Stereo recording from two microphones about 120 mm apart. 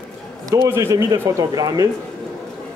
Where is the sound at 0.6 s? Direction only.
25° right (ahead or behind).